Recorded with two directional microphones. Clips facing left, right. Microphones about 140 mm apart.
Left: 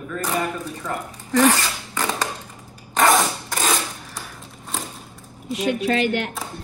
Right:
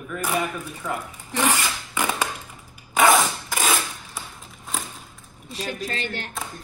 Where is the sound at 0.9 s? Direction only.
10° right (ahead or behind).